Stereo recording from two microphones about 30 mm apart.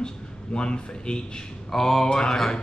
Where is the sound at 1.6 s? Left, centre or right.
Centre.